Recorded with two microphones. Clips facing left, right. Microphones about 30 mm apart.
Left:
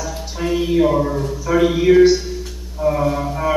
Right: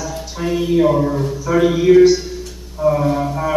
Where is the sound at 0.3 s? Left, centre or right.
Centre.